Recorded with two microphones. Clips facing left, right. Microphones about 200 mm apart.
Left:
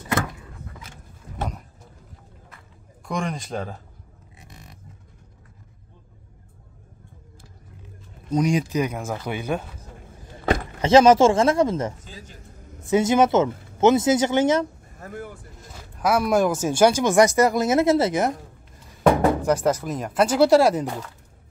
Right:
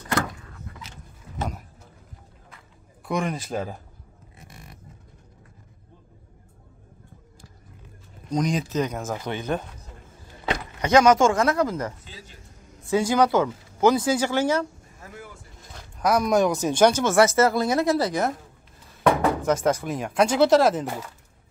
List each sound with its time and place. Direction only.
3.1 s speech: 5° right (ahead or behind)
8.3 s speech: 10° left (ahead or behind)
10.4 s a sound: 50° left (ahead or behind)
10.8 s speech: 25° left (ahead or behind)
12.0 s a man's voice: 45° left (ahead or behind)
12.8 s speech: 20° left (ahead or behind)
15.0 s speech: 50° left (ahead or behind)
15.7 s speech: 5° left (ahead or behind); by 18.3 s 20° left (ahead or behind)
19.4 s speech: 5° left (ahead or behind)
20.7 s speech: 5° right (ahead or behind)